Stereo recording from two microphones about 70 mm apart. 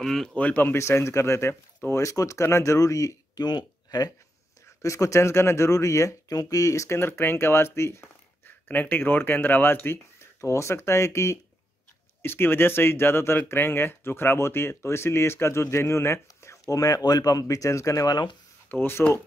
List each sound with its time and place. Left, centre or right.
0.0 s speech: centre
0.4 s speech: left
0.7 s speech: left
3.3 s speech: left
4.8 s speech: left
8.5 s speech: left
10.4 s speech: left
16.7 s speech: left
18.0 s speech: left
18.7 s speech: left